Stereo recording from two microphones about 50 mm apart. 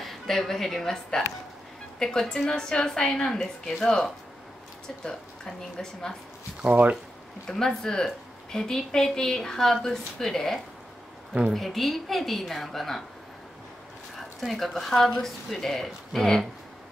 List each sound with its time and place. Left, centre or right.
0.0 s a woman's voice: centre
6.6 s speech: right
7.4 s a woman's voice: centre
14.1 s speech: centre